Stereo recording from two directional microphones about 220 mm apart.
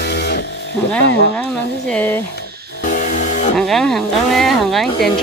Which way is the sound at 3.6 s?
Centre (ahead or behind).